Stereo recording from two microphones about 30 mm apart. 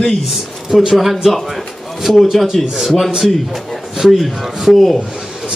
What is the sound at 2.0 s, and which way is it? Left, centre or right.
Speech, centre.